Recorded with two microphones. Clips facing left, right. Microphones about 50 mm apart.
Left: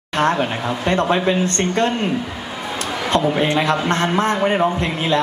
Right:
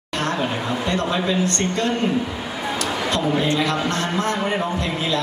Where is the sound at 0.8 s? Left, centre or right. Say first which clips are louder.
Left 6 dB; left.